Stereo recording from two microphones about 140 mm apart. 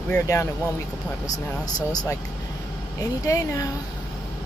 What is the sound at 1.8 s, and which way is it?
Speech, 25° left (ahead or behind).